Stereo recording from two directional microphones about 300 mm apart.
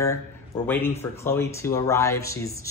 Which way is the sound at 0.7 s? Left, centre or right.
Centre.